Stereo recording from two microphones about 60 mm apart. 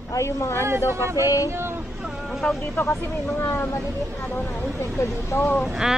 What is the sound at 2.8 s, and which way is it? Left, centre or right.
Speech, left.